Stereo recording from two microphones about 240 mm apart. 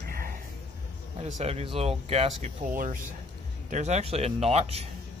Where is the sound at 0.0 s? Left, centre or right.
Right.